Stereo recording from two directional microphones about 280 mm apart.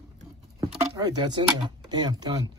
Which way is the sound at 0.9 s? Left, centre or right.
Centre.